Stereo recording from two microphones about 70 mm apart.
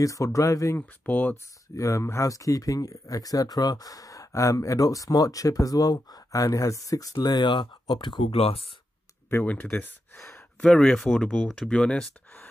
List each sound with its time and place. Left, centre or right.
0.0 s speech: left
1.0 s speech: left
1.8 s speech: left
9.3 s speech: left
10.3 s speech: centre